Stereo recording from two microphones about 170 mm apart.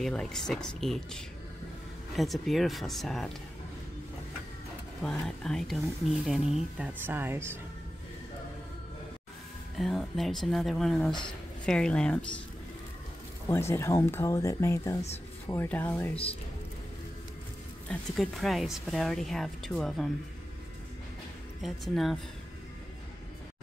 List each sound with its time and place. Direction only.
0.0 s speech: 5° left (ahead or behind)
5.2 s speech: 5° left (ahead or behind); by 7.4 s 15° right (ahead or behind)
9.8 s speech: centre (ahead or behind)
13.5 s speech: 15° left (ahead or behind)
17.8 s speech: centre (ahead or behind)
21.5 s speech: centre (ahead or behind)